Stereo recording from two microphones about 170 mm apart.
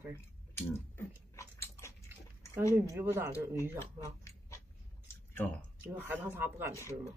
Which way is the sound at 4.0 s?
20° left (ahead or behind).